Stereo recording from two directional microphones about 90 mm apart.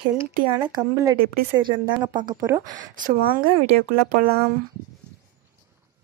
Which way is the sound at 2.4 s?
35° right (ahead or behind).